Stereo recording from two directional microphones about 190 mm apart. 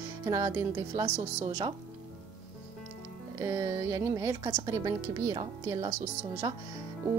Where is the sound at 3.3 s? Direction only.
15° right (ahead or behind).